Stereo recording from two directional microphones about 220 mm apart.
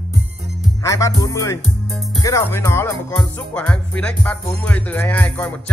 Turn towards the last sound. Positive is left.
turn(degrees=5)  # may be behind; listen again after turning